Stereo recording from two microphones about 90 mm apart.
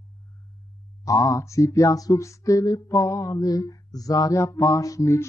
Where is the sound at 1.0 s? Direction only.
40° left (ahead or behind).